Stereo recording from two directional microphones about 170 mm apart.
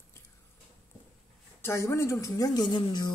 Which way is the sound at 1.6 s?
15° left (ahead or behind).